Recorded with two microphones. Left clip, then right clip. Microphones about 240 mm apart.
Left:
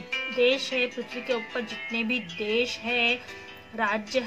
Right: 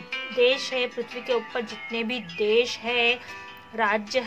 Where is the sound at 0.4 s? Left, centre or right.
Right.